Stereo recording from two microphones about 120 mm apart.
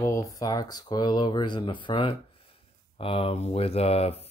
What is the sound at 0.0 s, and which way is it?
Speech, 25° left (ahead or behind).